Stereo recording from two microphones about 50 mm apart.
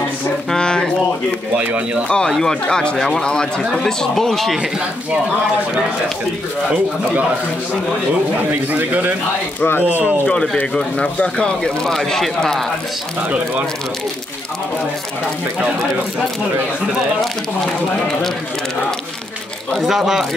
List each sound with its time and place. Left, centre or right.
0.5 s a sound: centre
2.0 s speech: centre
8.5 s a man's voice: right
10.7 s speech: centre
19.7 s speech: centre